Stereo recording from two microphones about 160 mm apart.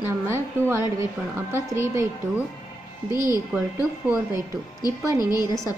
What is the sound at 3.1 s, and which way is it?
A woman's voice, 25° left (ahead or behind).